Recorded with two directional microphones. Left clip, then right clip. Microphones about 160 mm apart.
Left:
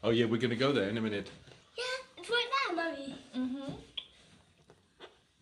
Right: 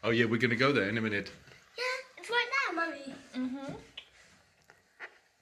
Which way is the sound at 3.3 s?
35° left (ahead or behind).